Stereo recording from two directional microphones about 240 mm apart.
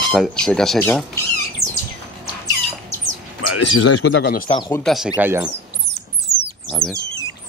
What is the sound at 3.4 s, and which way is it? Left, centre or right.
Speech, left.